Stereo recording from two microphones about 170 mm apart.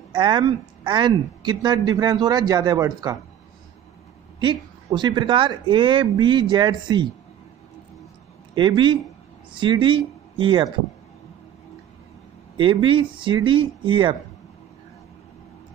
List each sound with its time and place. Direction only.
0.1 s speech: 30° right (ahead or behind)
4.4 s speech: 25° right (ahead or behind)
8.5 s speech: 25° right (ahead or behind)
12.5 s speech: 30° right (ahead or behind)